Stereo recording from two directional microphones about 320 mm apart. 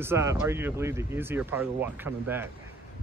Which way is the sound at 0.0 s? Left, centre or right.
Centre.